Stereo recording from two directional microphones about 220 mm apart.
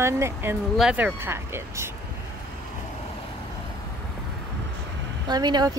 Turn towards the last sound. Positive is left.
turn(degrees=-20)  # may be behind; listen again after turning